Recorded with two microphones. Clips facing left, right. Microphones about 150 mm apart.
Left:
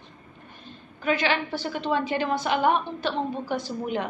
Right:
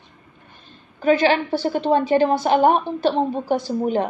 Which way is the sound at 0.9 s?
35° right (ahead or behind).